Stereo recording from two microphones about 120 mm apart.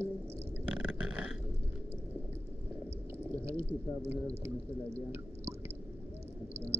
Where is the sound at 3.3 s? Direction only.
20° right (ahead or behind).